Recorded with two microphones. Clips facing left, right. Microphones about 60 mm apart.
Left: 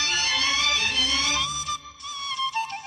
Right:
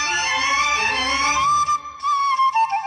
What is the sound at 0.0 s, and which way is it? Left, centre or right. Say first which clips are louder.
Music: right 5 dB; right.